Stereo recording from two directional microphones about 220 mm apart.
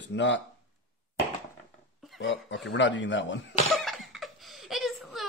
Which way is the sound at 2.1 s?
55° left (ahead or behind).